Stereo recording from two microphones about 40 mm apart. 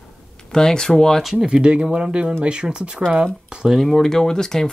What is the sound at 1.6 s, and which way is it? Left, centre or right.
Speech, right.